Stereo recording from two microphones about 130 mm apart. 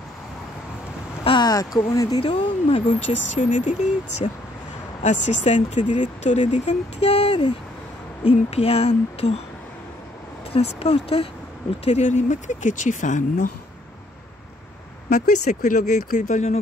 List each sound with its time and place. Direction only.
1.2 s speech: 35° left (ahead or behind)
2.2 s speech: 40° left (ahead or behind)
2.9 s speech: 80° left
4.2 s speech: 45° left (ahead or behind)
5.0 s speech: 65° left (ahead or behind)
8.5 s speech: 50° left (ahead or behind)
10.5 s speech: 50° left (ahead or behind)
11.8 s speech: 60° left (ahead or behind)
15.0 s speech: 70° left (ahead or behind)